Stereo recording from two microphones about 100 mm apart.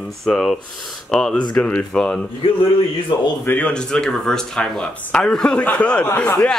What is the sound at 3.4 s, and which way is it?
Speech, 20° left (ahead or behind).